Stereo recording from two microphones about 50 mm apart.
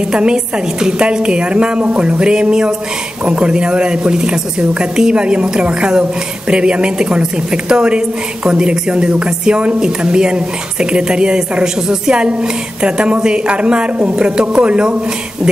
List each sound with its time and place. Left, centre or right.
0.1 s a woman's voice: centre